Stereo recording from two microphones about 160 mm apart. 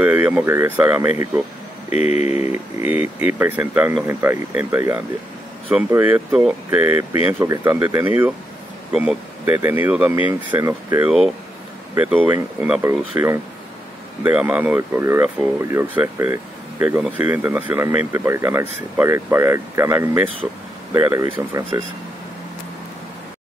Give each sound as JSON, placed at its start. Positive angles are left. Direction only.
{"t": 0.0, "sound": "speech", "side_deg": -10}
{"t": 2.0, "sound": "speech", "side_deg": 45}
{"t": 2.3, "sound": "speech", "side_deg": -10}